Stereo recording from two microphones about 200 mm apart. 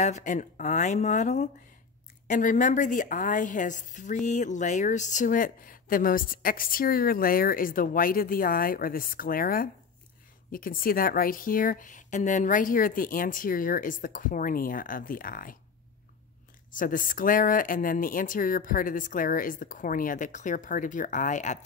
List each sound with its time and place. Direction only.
0.0 s a woman's voice: 35° left (ahead or behind)
16.7 s speech: 40° left (ahead or behind)